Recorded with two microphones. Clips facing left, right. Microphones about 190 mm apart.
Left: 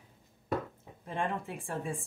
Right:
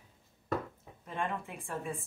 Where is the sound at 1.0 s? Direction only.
30° left (ahead or behind).